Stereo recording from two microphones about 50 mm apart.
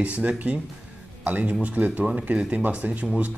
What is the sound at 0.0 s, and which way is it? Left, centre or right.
Speech, right.